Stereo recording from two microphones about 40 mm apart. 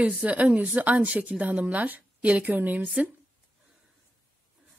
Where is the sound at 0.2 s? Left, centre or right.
Right.